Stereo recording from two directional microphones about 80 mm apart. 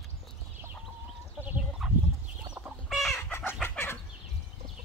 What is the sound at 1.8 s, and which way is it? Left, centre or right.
Fowl, centre.